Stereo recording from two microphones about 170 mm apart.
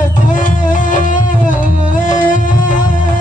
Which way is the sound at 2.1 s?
50° left (ahead or behind).